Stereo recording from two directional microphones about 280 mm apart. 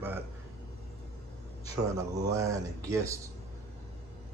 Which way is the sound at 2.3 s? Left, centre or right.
Centre.